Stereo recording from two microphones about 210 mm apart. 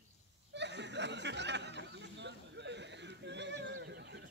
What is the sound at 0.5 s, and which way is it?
Chuckle, 55° right (ahead or behind).